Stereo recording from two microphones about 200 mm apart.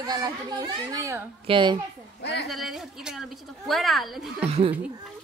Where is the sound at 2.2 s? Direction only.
55° left (ahead or behind).